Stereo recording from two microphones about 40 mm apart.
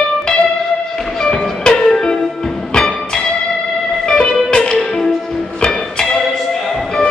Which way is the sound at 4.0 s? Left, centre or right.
Centre.